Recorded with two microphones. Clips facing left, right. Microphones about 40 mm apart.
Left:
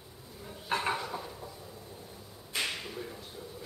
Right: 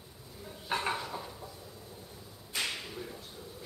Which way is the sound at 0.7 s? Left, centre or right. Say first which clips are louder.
Left 2 dB; centre.